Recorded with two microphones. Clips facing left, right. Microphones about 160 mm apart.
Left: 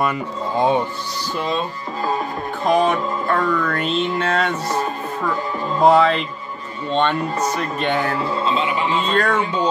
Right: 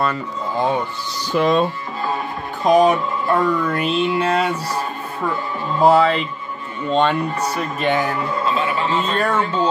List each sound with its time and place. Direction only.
0.0 s speech: 15° left (ahead or behind)
1.3 s speech: 90° right
2.6 s mantra: 15° right (ahead or behind)
5.8 s speech: 5° right (ahead or behind)
6.9 s mantra: 5° right (ahead or behind)
7.5 s speech: 5° right (ahead or behind)
8.2 s a man's voice: 30° left (ahead or behind)
9.0 s mantra: 10° right (ahead or behind)
9.4 s speech: 15° left (ahead or behind)